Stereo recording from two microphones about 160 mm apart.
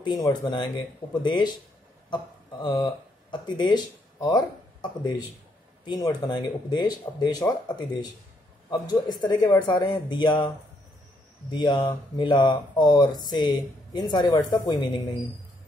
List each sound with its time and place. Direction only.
0.0 s speech: 25° left (ahead or behind)
5.9 s speech: 25° left (ahead or behind)
11.5 s speech: 30° left (ahead or behind)